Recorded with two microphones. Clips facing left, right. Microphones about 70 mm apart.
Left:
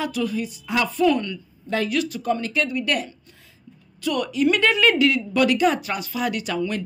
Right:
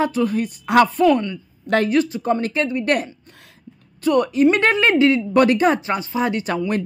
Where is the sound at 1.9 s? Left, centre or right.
Right.